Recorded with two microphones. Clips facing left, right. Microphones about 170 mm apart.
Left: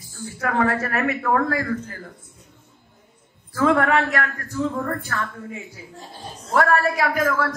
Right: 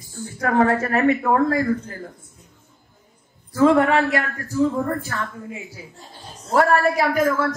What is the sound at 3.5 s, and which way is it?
A man's voice, 25° right (ahead or behind).